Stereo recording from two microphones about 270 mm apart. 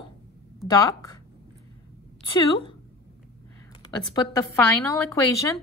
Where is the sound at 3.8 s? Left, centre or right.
Centre.